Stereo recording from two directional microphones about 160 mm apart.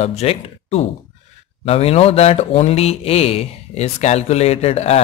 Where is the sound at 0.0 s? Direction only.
40° left (ahead or behind).